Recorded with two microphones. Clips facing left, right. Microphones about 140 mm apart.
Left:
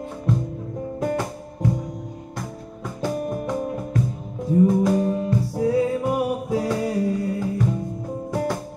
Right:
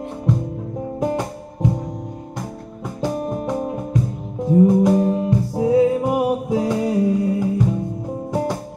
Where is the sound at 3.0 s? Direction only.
20° right (ahead or behind).